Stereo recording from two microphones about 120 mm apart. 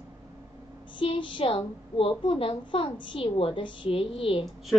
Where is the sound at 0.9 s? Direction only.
45° left (ahead or behind).